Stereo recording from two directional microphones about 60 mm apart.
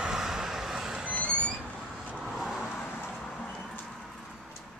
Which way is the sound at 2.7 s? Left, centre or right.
Left.